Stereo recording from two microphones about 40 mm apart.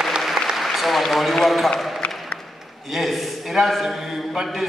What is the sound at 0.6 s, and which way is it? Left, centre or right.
Applause, centre.